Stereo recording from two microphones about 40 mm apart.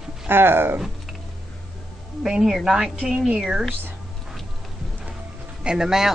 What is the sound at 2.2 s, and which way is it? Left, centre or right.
A woman's voice, centre.